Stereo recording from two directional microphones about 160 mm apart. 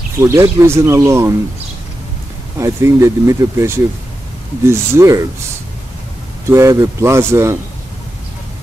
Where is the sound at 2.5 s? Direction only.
20° right (ahead or behind).